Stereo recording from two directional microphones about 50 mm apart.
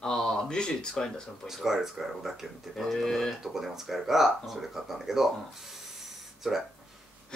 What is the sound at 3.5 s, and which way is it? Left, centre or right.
Speech, centre.